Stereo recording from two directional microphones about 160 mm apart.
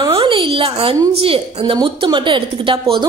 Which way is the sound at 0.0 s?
30° right (ahead or behind).